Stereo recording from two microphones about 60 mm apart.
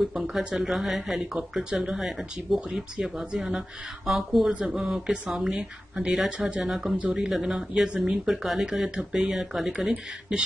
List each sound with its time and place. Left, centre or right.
0.0 s speech: centre
5.1 s speech: centre
5.4 s speech: centre
8.3 s speech: centre